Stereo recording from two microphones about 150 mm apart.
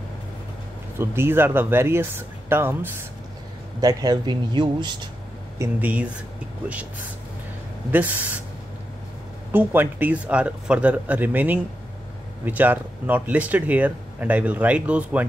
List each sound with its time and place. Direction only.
0.9 s speech: 15° right (ahead or behind)
3.8 s speech: 25° right (ahead or behind)
5.6 s speech: 10° right (ahead or behind)
7.9 s speech: 10° right (ahead or behind)
9.5 s speech: 15° right (ahead or behind)